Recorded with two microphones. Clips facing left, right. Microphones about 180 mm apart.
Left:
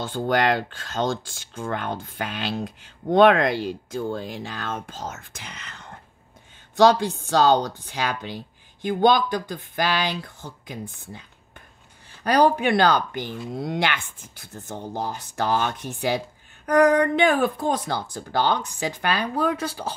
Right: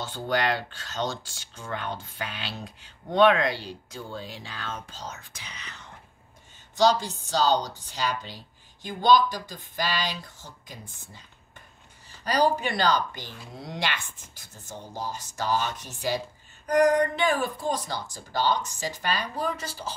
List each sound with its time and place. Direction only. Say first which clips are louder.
0.0 s speech: left 5 dB; 55° left (ahead or behind)